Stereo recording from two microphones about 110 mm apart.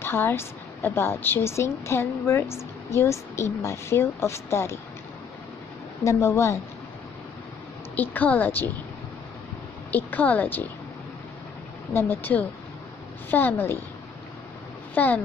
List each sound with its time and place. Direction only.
0.0 s speech: 20° left (ahead or behind)
6.0 s speech: 25° left (ahead or behind)
7.9 s speech: 15° left (ahead or behind)
9.8 s speech: 15° left (ahead or behind)
11.9 s speech: 20° left (ahead or behind)
15.0 s speech: 15° left (ahead or behind)